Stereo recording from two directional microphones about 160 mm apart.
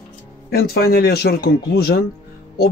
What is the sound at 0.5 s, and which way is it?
Speech, 80° left.